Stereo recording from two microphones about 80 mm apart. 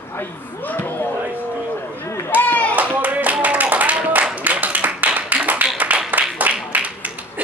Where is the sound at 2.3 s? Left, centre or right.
Left.